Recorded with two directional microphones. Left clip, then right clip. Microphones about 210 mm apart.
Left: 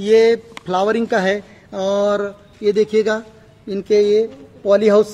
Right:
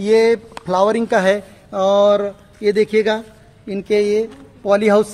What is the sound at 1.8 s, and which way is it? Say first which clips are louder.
Speech: right 4 dB; 20° right (ahead or behind).